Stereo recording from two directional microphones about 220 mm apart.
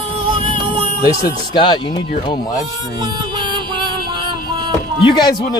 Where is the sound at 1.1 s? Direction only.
20° left (ahead or behind).